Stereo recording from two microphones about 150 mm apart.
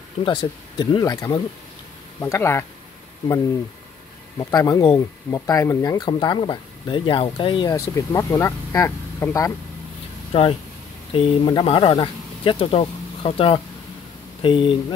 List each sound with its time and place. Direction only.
0.2 s speech: 30° left (ahead or behind)
4.4 s speech: 25° left (ahead or behind)
10.3 s speech: 40° left (ahead or behind)